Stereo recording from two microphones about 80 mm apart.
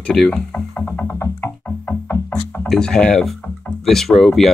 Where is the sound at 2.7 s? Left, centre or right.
Centre.